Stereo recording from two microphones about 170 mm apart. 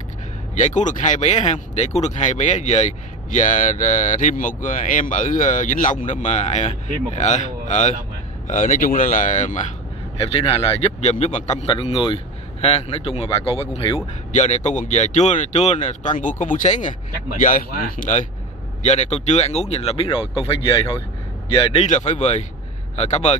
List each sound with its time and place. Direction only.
0.6 s speech: 45° left (ahead or behind)
10.1 s speech: 35° left (ahead or behind); by 18.2 s 55° left (ahead or behind)
18.8 s a man's voice: 40° left (ahead or behind)
21.8 s speech: 45° left (ahead or behind)